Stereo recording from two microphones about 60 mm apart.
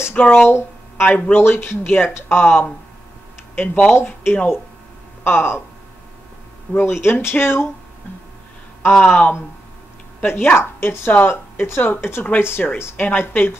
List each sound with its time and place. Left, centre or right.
0.1 s speech: left
0.5 s a sound: left
1.0 s speech: left
1.3 s speech: left
3.5 s speech: left
4.0 s speech: left
6.7 s speech: left
9.1 s speech: left